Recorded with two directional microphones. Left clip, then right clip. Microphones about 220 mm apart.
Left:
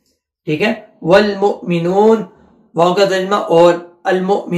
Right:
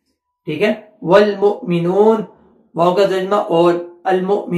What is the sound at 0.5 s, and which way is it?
Speech, 10° left (ahead or behind).